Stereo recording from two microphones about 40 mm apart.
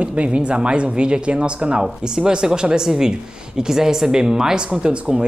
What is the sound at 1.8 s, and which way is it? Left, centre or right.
Speech, centre.